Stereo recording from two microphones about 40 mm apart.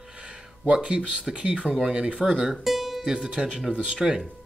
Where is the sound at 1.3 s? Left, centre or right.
Right.